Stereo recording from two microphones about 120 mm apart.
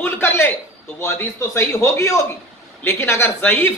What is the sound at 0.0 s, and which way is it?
A man's voice, 20° left (ahead or behind).